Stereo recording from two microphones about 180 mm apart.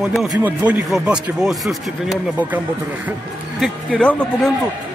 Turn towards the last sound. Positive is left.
turn(degrees=5)  # may be behind; listen again after turning